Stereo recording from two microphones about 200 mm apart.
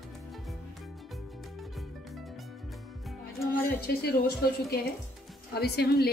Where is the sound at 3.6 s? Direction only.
50° left (ahead or behind).